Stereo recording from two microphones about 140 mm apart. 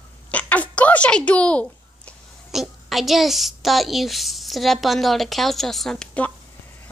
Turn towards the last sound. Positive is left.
turn(degrees=5)  # may be behind; listen again after turning